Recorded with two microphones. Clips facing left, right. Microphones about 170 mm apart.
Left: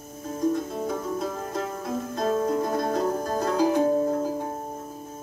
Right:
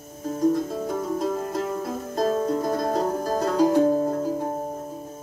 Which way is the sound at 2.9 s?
35° right (ahead or behind).